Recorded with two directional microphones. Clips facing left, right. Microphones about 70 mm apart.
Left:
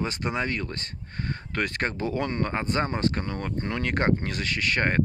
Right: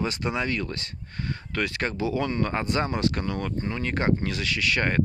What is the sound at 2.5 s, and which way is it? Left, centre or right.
Speech, left.